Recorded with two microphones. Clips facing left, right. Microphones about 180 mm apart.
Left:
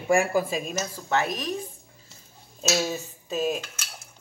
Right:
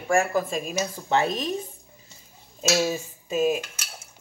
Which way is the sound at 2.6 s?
10° right (ahead or behind).